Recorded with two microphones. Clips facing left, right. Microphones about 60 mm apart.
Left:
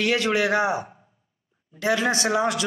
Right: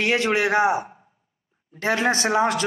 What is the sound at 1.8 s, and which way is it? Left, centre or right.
Speech, right.